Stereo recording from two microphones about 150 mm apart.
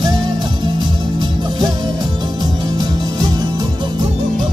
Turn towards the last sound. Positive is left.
turn(degrees=-30)  # may be behind; listen again after turning